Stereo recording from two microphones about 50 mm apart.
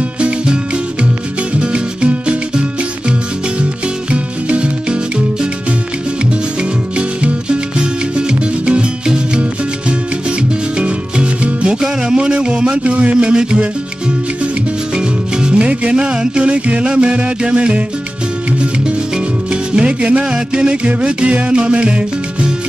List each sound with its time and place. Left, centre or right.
1.5 s music: right
4.1 s music: right
7.0 s music: right
15.0 s music: centre